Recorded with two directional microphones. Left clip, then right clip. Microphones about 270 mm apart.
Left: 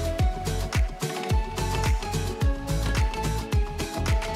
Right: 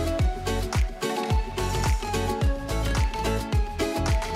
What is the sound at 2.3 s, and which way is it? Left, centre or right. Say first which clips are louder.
Music: right 3 dB; centre.